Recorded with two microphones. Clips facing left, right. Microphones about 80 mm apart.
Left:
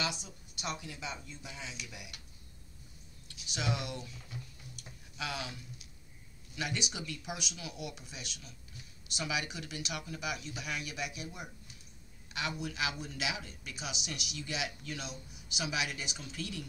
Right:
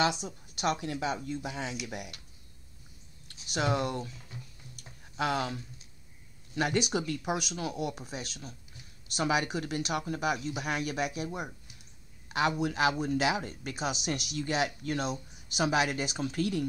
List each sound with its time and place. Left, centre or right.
0.0 s speech: right
3.4 s speech: right
4.7 s a sound: right
6.5 s speech: right